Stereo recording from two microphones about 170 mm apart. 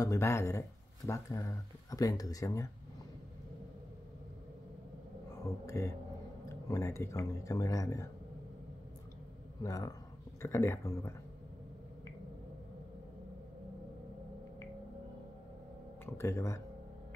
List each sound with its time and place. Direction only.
0.0 s speech: 15° left (ahead or behind)
5.4 s speech: 15° left (ahead or behind)
9.6 s speech: 20° left (ahead or behind)
16.1 s speech: 15° left (ahead or behind)